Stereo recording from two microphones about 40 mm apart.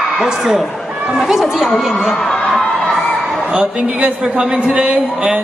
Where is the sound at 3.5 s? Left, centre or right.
Right.